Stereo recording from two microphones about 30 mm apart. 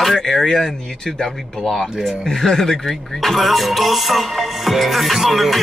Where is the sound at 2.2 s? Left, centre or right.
Centre.